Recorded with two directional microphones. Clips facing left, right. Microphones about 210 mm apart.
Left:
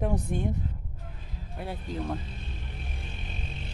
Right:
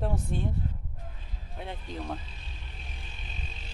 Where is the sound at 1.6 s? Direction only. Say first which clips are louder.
Left 4 dB; 10° left (ahead or behind).